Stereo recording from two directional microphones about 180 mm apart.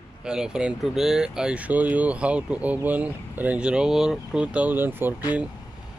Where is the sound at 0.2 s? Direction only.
5° right (ahead or behind).